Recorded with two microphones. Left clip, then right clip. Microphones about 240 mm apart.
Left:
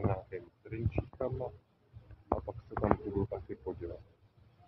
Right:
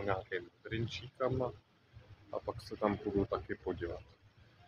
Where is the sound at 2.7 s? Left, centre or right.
Right.